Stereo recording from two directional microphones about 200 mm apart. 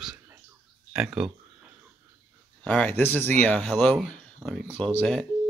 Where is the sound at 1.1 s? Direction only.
5° right (ahead or behind).